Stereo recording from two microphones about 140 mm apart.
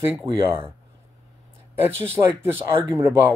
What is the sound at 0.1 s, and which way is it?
Speech, 15° right (ahead or behind).